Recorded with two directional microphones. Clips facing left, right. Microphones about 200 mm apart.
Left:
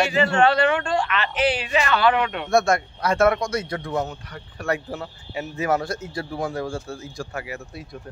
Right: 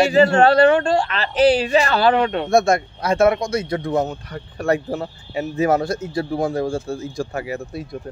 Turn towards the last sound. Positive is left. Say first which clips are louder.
# right 6 dB
turn(degrees=-30)  # may be behind; listen again after turning